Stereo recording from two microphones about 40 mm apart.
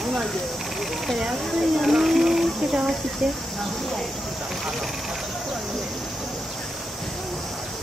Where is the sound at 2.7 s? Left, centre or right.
Centre.